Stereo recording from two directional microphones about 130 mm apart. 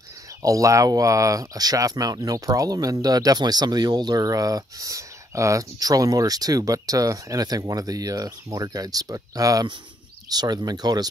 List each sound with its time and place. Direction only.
0.4 s speech: 25° right (ahead or behind)